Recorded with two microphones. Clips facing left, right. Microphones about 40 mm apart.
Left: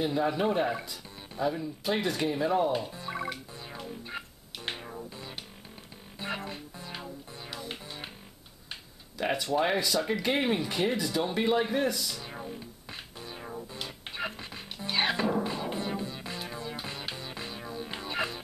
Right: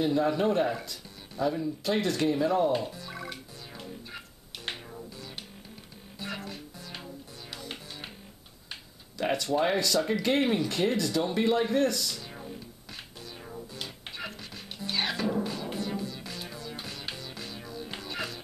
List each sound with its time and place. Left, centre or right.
0.0 s speech: centre
2.9 s music: left
3.3 s music: centre
4.8 s music: left
7.5 s music: centre
9.2 s speech: centre
12.2 s music: centre